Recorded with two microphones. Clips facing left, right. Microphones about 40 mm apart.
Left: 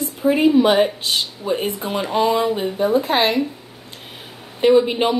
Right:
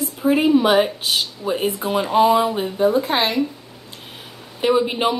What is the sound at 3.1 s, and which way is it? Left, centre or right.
Speech, centre.